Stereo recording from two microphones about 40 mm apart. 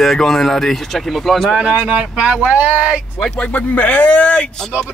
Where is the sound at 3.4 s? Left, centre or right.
Left.